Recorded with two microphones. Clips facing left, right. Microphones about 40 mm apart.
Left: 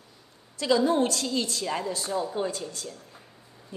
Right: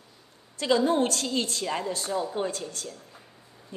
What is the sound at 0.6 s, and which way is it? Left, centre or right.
A woman's voice, right.